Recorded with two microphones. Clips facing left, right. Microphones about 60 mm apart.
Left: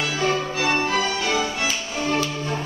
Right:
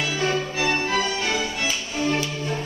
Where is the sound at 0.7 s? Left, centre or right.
Centre.